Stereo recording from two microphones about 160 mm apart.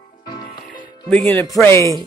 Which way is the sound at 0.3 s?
30° left (ahead or behind).